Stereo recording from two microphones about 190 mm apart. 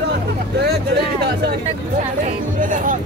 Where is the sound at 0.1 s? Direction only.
55° right (ahead or behind).